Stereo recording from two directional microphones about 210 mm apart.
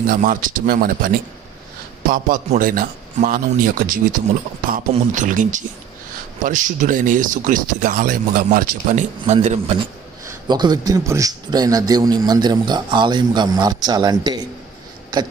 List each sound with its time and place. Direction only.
0.0 s speech: 40° right (ahead or behind)
10.2 s a man's voice: 20° right (ahead or behind)